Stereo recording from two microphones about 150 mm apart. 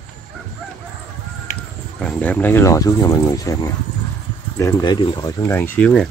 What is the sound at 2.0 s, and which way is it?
Speech, 10° left (ahead or behind).